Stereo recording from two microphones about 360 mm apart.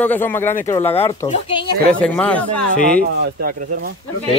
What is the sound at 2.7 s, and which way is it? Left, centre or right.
Speech, right.